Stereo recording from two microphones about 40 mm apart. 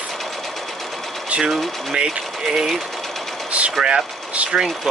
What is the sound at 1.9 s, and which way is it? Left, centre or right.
Speech, centre.